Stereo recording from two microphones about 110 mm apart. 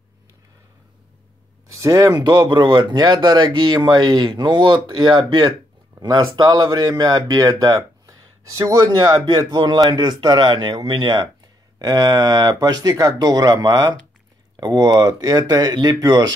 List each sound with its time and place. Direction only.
1.7 s speech: 30° right (ahead or behind)